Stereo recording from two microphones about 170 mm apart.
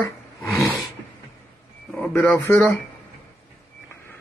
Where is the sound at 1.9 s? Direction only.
15° left (ahead or behind).